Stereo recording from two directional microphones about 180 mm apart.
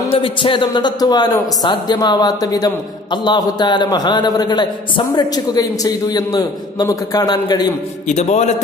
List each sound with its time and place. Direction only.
0.1 s a man's voice: 30° left (ahead or behind)
8.1 s a man's voice: 40° left (ahead or behind)